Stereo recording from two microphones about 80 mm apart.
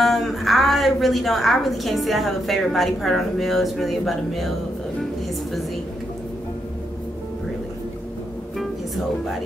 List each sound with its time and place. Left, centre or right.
0.0 s a woman's voice: centre
8.5 s music: centre